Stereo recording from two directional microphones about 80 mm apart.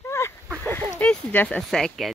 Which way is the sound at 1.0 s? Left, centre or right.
Centre.